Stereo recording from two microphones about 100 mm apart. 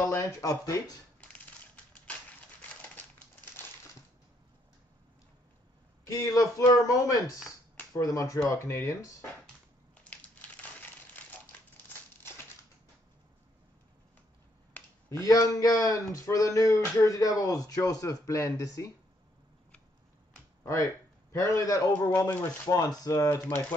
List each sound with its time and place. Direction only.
0.0 s speech: 30° left (ahead or behind)
6.3 s speech: 35° left (ahead or behind)
10.0 s crushing: 15° left (ahead or behind)
11.7 s scissors: 20° left (ahead or behind)
15.0 s speech: 30° left (ahead or behind)
20.6 s a man's voice: 30° left (ahead or behind)
22.3 s speech: 20° left (ahead or behind)
22.8 s speech: 35° left (ahead or behind)